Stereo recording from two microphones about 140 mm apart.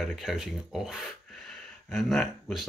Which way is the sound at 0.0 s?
Centre (ahead or behind).